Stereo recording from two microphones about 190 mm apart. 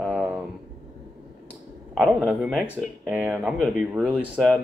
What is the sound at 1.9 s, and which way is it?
Speech, 5° right (ahead or behind).